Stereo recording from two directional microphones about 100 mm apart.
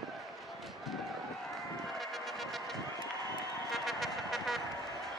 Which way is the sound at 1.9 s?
Centre (ahead or behind).